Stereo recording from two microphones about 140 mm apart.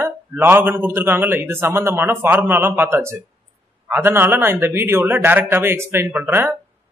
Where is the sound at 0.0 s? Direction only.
15° right (ahead or behind).